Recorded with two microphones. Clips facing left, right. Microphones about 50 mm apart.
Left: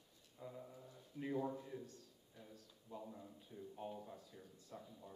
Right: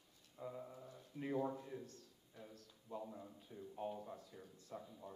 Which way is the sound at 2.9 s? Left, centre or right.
Centre.